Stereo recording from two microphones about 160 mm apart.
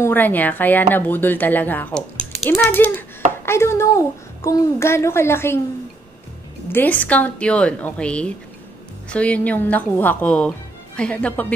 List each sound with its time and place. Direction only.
0.0 s speech: 10° left (ahead or behind)
6.7 s speech: 10° left (ahead or behind)